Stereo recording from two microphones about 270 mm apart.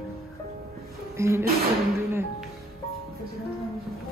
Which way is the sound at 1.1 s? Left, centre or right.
Centre.